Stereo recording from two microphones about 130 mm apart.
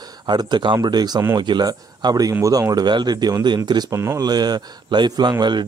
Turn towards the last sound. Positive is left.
turn(degrees=-35)  # may be behind; listen again after turning